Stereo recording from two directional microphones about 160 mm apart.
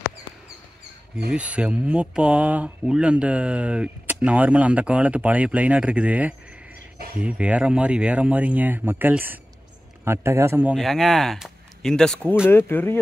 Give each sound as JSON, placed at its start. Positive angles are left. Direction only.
{"t": 1.3, "sound": "speech", "side_deg": -5}
{"t": 10.8, "sound": "speech", "side_deg": 0}